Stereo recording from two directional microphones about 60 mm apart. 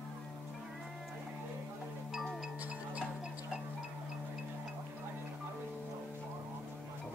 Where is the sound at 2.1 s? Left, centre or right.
Centre.